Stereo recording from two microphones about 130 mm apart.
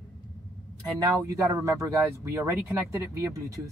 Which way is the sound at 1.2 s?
20° right (ahead or behind).